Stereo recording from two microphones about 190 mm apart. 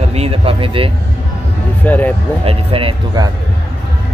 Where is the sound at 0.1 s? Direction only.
30° right (ahead or behind).